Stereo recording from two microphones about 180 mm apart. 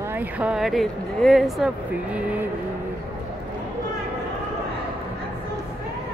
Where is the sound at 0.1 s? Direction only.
10° right (ahead or behind).